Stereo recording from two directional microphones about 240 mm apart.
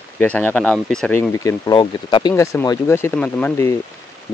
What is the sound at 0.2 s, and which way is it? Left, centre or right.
Speech, centre.